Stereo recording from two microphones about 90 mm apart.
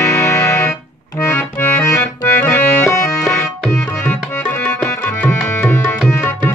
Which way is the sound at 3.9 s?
20° left (ahead or behind).